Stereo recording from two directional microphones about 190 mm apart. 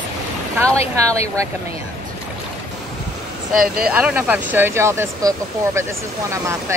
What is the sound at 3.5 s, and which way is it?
Speech, 50° right (ahead or behind).